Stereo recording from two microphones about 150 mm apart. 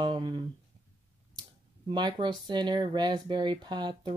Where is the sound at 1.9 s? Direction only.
30° right (ahead or behind).